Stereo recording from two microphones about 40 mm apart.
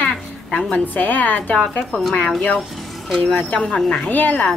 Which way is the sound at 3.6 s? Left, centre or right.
Centre.